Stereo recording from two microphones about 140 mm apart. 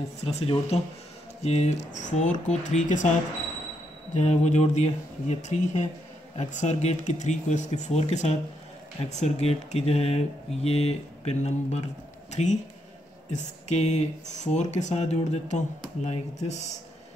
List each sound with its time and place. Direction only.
0.2 s speech: 45° left (ahead or behind); by 3.1 s 60° left (ahead or behind)
4.1 s speech: 55° left (ahead or behind)